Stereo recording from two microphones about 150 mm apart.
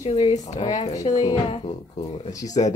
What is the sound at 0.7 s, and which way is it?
Speech, 50° left (ahead or behind).